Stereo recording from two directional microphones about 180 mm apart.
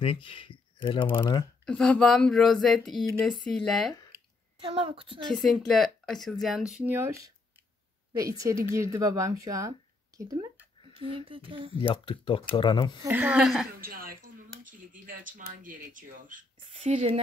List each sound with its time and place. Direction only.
0.0 s speech: 30° left (ahead or behind)
1.7 s speech: 5° left (ahead or behind)
4.6 s a woman's voice: 30° right (ahead or behind)
5.3 s speech: centre (ahead or behind)
6.7 s a woman's voice: 10° right (ahead or behind)
10.8 s speech: 30° right (ahead or behind)
11.8 s speech: 30° left (ahead or behind)
13.0 s a woman's voice: 10° right (ahead or behind)
13.7 s speech: 55° right (ahead or behind)
16.9 s speech: 35° right (ahead or behind)